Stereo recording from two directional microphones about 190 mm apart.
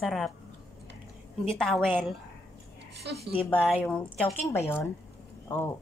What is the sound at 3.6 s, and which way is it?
A woman's voice, 5° left (ahead or behind).